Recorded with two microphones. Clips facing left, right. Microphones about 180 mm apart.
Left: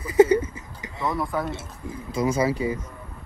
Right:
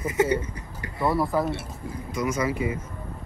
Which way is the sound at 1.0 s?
5° right (ahead or behind).